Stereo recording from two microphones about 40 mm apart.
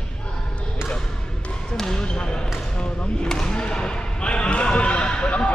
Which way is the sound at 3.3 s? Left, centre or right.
Left.